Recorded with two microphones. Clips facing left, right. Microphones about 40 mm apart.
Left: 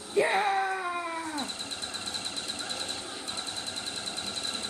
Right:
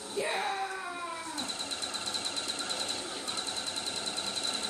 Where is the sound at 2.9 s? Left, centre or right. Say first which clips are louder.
Even; centre.